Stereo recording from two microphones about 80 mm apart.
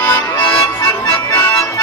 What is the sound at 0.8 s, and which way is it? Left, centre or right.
Accordion, left.